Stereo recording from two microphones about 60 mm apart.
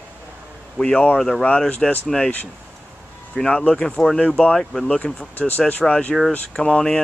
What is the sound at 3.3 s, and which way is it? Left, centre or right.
Speech, centre.